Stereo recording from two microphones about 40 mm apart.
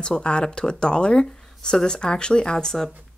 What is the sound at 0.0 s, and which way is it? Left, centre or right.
Speech, left.